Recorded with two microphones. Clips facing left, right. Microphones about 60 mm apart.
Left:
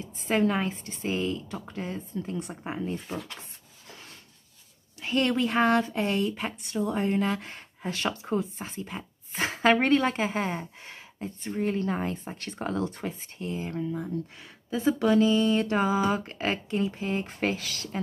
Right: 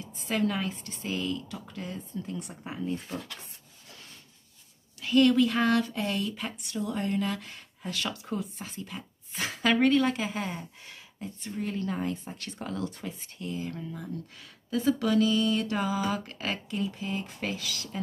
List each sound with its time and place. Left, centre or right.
0.0 s speech: left
5.0 s speech: left